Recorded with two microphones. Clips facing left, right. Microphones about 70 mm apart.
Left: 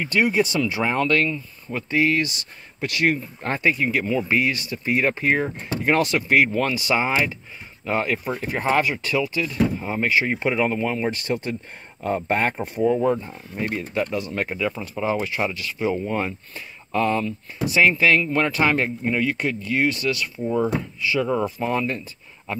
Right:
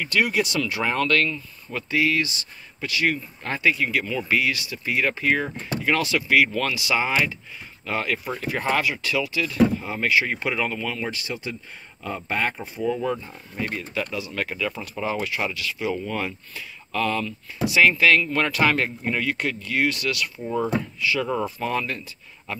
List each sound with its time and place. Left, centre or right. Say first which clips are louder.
0.0 s speech: left 2 dB; left
1.9 s speech: left 2 dB; left
2.8 s speech: left 3 dB; left
3.8 s speech: left 3 dB; left
4.4 s speech: left 2 dB; left
5.9 s speech: left 3 dB; left
7.0 s speech: left 1 dB; left
11.1 s speech: left 6 dB; left
14.3 s speech: left 3 dB; left
15.2 s speech: left 2 dB; left
20.4 s speech: left 4 dB; centre
21.1 s speech: left 3 dB; centre